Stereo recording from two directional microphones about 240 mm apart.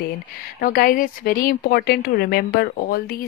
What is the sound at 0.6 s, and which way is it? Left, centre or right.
Speech, left.